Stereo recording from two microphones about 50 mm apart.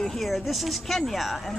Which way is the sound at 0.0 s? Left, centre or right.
Centre.